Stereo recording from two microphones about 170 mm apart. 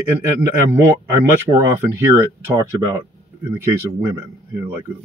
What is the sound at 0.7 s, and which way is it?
Speech, 15° right (ahead or behind).